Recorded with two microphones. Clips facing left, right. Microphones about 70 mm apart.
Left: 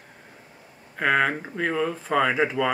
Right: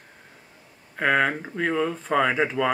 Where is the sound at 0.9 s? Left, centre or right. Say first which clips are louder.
Even; centre.